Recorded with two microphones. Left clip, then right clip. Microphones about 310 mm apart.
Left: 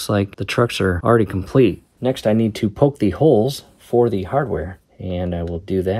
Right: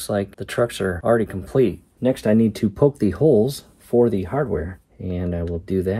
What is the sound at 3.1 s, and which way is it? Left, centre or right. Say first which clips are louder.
Speech: left 3 dB; centre.